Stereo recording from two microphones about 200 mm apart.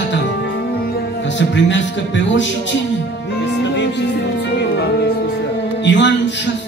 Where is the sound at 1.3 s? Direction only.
65° left (ahead or behind).